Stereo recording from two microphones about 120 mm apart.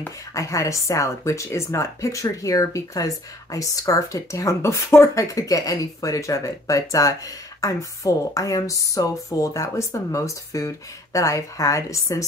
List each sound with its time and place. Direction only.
0.3 s speech: 25° left (ahead or behind)